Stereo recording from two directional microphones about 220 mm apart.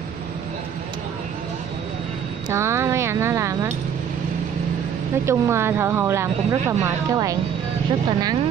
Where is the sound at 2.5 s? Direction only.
10° right (ahead or behind).